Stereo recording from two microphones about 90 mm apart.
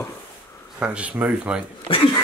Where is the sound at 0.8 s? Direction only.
15° right (ahead or behind).